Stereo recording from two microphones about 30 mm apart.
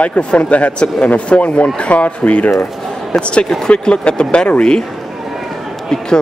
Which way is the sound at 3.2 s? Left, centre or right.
Left.